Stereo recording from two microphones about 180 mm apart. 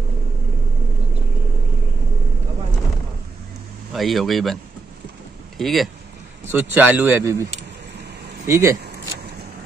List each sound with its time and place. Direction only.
3.9 s speech: centre (ahead or behind)
5.6 s speech: centre (ahead or behind)
6.5 s speech: 10° right (ahead or behind)
8.5 s speech: 15° right (ahead or behind)